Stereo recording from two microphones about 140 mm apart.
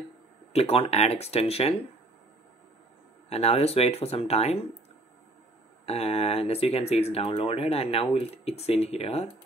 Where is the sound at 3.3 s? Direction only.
50° left (ahead or behind).